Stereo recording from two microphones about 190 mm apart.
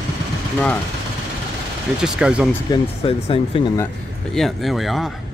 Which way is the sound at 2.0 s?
5° right (ahead or behind).